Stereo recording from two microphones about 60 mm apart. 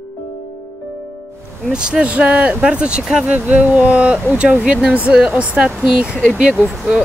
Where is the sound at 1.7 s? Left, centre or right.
Centre.